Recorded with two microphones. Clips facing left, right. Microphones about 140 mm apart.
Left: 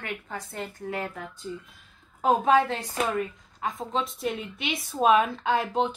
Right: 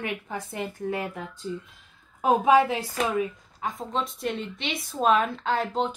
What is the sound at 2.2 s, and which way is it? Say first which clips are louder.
A woman's voice: right 2 dB; 10° right (ahead or behind).